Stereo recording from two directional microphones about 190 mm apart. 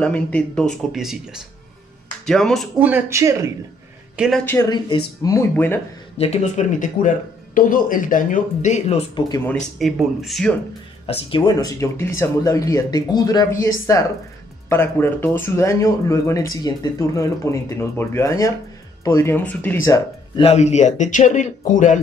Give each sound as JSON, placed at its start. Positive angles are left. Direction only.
{"t": 0.0, "sound": "speech", "side_deg": 5}
{"t": 2.9, "sound": "speech", "side_deg": -15}
{"t": 4.2, "sound": "speech", "side_deg": 0}
{"t": 4.6, "sound": "speech", "side_deg": 20}
{"t": 6.1, "sound": "speech", "side_deg": 35}
{"t": 9.3, "sound": "speech", "side_deg": 10}
{"t": 9.8, "sound": "speech", "side_deg": 0}
{"t": 11.1, "sound": "speech", "side_deg": 30}
{"t": 20.3, "sound": "speech", "side_deg": 35}